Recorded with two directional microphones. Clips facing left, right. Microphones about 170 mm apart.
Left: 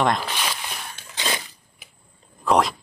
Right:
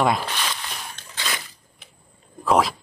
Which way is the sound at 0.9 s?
15° left (ahead or behind).